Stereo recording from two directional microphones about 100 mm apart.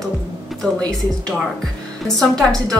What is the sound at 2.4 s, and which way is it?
Speech, 5° left (ahead or behind).